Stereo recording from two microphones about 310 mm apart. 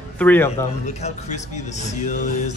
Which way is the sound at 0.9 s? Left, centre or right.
Left.